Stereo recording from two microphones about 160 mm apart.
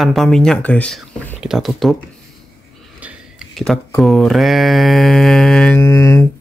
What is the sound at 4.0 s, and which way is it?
Mantra, centre (ahead or behind).